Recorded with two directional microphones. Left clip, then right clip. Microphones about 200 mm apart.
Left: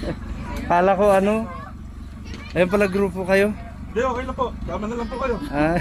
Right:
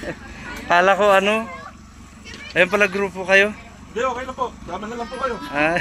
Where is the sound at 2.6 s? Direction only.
5° left (ahead or behind).